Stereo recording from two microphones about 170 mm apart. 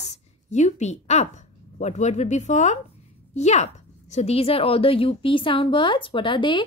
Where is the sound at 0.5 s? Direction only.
45° left (ahead or behind).